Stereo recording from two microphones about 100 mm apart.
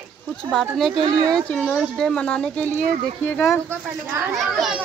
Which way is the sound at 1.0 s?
40° right (ahead or behind).